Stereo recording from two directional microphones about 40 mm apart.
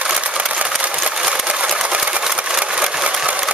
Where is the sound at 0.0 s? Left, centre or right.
Right.